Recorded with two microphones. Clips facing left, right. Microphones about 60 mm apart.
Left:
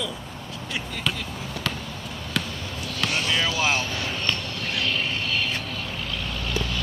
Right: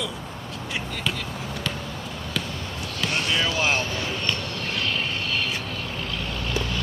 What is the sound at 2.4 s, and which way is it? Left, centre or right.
Basketball bounce, centre.